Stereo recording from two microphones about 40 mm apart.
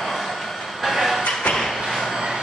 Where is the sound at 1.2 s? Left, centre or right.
Left.